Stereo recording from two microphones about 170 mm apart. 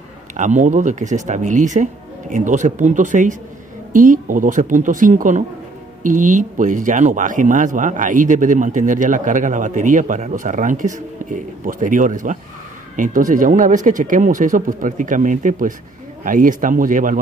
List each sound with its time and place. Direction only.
0.4 s speech: 45° right (ahead or behind)